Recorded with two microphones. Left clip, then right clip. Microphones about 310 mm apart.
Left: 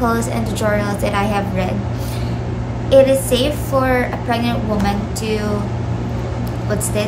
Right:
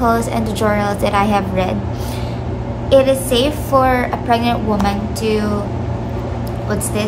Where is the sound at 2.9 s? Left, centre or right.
Centre.